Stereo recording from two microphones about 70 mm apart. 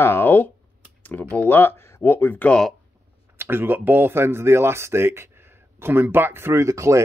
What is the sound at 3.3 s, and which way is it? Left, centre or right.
Speech, right.